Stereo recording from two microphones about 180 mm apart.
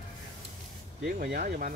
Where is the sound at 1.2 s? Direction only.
50° right (ahead or behind).